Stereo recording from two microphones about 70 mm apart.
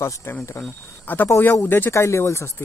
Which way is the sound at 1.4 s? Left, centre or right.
Left.